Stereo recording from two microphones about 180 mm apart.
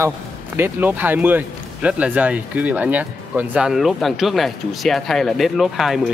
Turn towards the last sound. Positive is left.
turn(degrees=0)  # may be behind; listen again after turning